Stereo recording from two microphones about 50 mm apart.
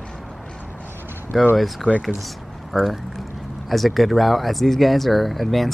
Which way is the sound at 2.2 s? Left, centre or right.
Centre.